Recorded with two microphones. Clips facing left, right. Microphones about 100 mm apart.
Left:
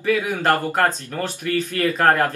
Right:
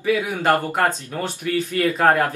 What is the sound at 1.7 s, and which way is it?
Speech, 15° right (ahead or behind).